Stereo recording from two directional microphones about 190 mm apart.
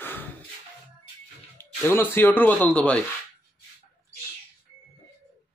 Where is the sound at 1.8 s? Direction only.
10° left (ahead or behind).